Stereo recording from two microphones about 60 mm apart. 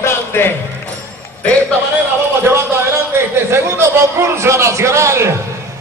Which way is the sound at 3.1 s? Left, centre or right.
Right.